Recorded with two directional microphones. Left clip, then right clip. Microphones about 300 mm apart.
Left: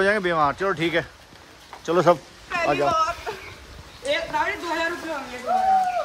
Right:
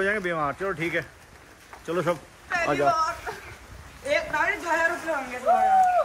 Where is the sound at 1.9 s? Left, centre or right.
Centre.